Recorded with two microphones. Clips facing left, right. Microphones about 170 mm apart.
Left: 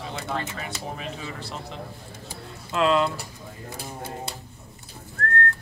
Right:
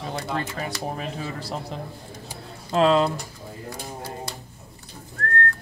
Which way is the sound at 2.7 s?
35° right (ahead or behind).